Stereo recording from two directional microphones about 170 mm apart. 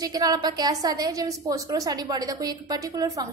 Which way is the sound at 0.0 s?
20° right (ahead or behind).